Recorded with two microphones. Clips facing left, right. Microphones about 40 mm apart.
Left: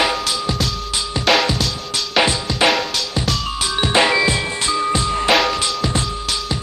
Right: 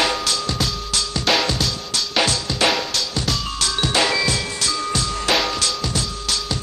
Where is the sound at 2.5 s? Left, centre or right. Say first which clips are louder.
Left 3 dB; centre.